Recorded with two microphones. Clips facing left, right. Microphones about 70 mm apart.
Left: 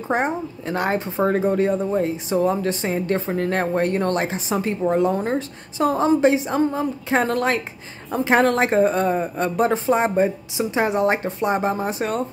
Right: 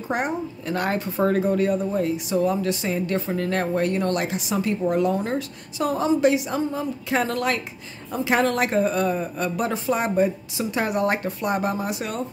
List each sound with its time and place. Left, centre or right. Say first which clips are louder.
0.1 s speech: left 3 dB; left